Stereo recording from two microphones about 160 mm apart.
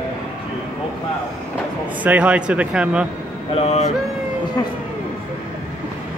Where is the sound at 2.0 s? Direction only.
10° right (ahead or behind).